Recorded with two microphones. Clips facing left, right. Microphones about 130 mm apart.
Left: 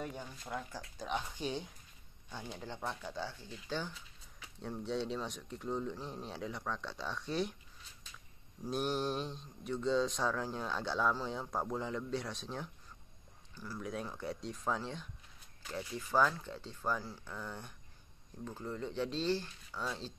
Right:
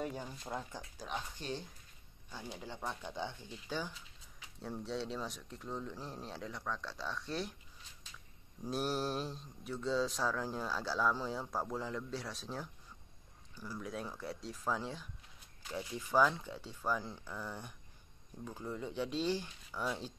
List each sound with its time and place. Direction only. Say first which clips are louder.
0.0 s speech: right 2 dB; 30° right (ahead or behind)
0.9 s speech: left 4 dB; centre (ahead or behind)
2.3 s speech: left 1 dB; 10° right (ahead or behind)
8.6 s speech: left 1 dB; 5° right (ahead or behind)
13.7 s speech: left 2 dB; centre (ahead or behind)